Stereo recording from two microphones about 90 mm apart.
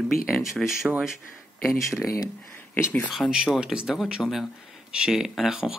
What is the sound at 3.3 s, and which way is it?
Speech, 10° right (ahead or behind).